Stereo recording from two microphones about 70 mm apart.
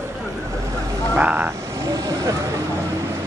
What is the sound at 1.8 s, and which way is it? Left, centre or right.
Vehicle, right.